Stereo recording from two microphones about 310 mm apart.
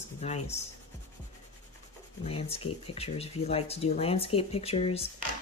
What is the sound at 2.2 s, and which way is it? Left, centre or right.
Speech, centre.